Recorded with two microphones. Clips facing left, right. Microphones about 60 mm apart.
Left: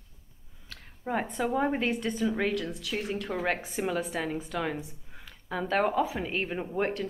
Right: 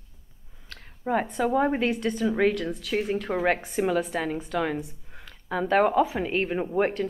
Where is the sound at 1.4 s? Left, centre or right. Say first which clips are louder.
Right 4 dB; centre.